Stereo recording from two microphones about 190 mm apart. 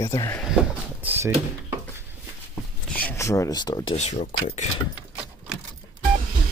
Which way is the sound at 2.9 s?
10° left (ahead or behind).